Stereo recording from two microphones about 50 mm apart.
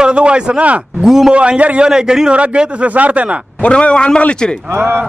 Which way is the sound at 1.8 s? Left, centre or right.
Centre.